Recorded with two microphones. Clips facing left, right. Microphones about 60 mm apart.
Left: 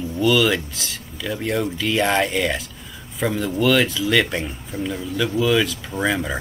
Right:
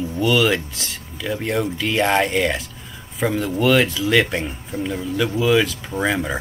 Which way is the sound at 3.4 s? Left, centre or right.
Centre.